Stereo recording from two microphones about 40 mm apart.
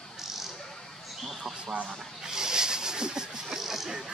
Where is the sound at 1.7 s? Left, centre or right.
Right.